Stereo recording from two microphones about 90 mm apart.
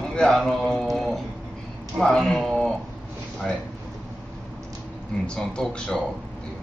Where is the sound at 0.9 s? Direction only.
Centre (ahead or behind).